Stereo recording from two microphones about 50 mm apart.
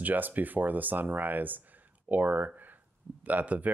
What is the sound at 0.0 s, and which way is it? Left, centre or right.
Speech, right.